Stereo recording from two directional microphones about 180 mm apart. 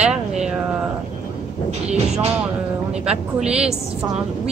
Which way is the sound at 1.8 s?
35° right (ahead or behind).